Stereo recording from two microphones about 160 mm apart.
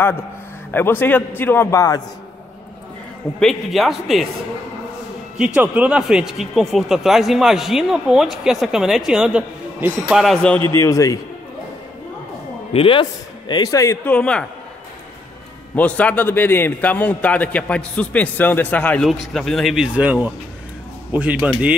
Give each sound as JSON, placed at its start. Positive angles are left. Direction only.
{"t": 0.7, "sound": "a man's voice", "side_deg": 10}
{"t": 3.3, "sound": "speech", "side_deg": 0}
{"t": 5.4, "sound": "speech", "side_deg": -10}
{"t": 10.2, "sound": "speech", "side_deg": 5}
{"t": 10.8, "sound": "speech", "side_deg": 20}
{"t": 12.7, "sound": "speech", "side_deg": 35}
{"t": 13.5, "sound": "speech", "side_deg": 20}
{"t": 14.0, "sound": "a man's voice", "side_deg": 5}
{"t": 15.7, "sound": "a man's voice", "side_deg": 10}